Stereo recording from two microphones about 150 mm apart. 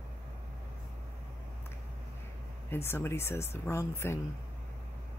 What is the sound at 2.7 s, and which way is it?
Speech, 15° left (ahead or behind).